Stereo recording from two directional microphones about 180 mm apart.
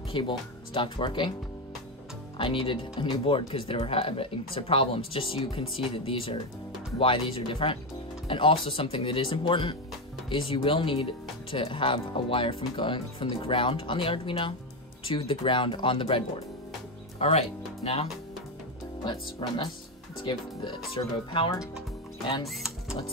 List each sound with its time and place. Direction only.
0.1 s speech: 25° left (ahead or behind)
2.3 s speech: 30° left (ahead or behind)
19.4 s speech: 30° left (ahead or behind)
22.5 s music: centre (ahead or behind)